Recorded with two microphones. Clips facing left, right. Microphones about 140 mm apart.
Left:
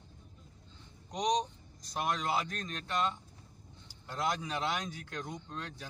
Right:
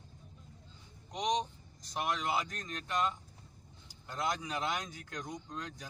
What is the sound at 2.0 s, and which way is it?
Speech, 15° right (ahead or behind).